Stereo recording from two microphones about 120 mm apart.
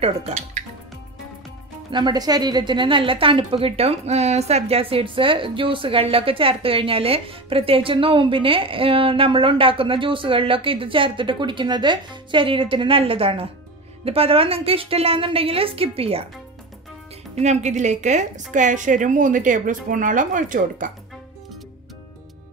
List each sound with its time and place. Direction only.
0.0 s music: 65° right (ahead or behind)
1.9 s a woman's voice: 40° right (ahead or behind)
17.4 s a woman's voice: 75° right (ahead or behind); by 20.9 s 90° right